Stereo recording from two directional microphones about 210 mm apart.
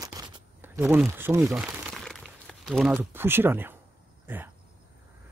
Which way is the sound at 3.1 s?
10° right (ahead or behind).